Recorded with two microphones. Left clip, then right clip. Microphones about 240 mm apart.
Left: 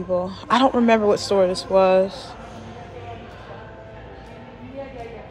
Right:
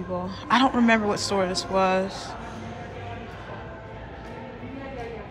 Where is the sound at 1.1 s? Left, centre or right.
Centre.